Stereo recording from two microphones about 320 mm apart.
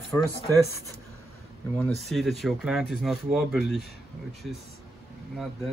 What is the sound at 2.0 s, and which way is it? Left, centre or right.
Speech, centre.